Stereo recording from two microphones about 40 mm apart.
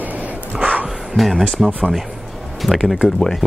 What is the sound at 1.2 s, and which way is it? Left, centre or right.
Speech, centre.